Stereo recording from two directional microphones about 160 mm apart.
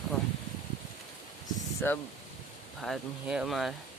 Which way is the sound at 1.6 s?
20° left (ahead or behind).